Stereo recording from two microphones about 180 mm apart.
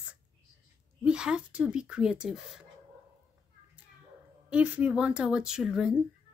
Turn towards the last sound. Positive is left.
turn(degrees=-5)  # may be behind; listen again after turning